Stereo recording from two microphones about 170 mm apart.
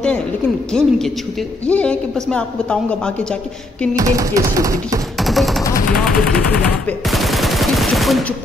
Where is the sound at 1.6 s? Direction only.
5° left (ahead or behind).